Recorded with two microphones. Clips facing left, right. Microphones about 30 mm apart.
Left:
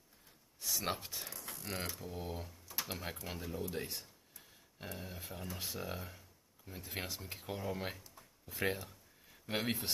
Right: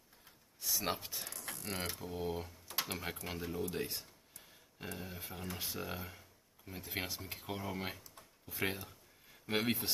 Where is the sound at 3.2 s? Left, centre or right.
Centre.